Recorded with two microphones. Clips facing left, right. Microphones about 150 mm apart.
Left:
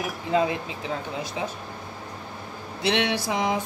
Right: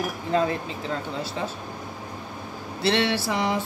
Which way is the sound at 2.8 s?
15° left (ahead or behind).